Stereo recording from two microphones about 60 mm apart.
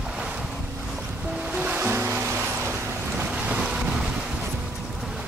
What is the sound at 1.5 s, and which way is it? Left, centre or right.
Waves, right.